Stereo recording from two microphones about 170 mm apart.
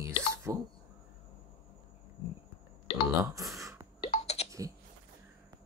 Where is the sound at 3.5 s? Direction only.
15° right (ahead or behind).